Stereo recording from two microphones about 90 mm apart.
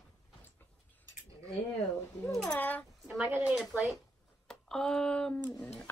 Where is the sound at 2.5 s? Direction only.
20° left (ahead or behind).